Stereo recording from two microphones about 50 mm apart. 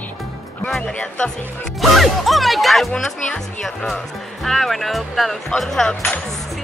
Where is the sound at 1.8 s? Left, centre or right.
Centre.